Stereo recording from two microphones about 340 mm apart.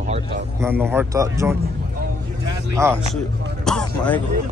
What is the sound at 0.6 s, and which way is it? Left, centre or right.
Speech, centre.